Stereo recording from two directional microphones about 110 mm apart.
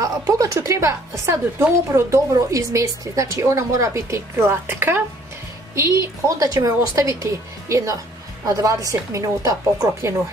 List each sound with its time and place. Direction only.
0.0 s a woman's voice: 30° right (ahead or behind)